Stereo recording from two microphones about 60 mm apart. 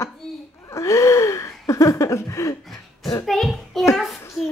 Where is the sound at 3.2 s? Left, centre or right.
Centre.